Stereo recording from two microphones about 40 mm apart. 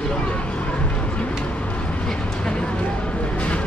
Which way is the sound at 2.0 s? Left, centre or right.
Left.